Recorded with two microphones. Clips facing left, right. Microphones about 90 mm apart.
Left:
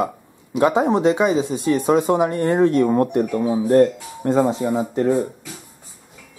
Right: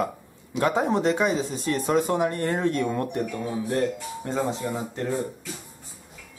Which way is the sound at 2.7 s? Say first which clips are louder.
Left 9 dB; 40° left (ahead or behind).